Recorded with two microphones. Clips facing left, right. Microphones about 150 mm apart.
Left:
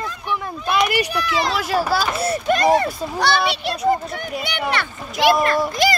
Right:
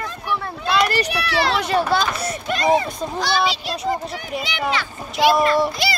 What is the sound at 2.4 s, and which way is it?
Speech, 50° left (ahead or behind).